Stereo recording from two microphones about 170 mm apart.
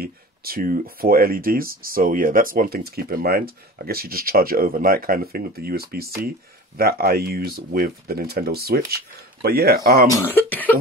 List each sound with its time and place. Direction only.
0.0 s speech: 60° right (ahead or behind)
10.1 s cough: 10° left (ahead or behind)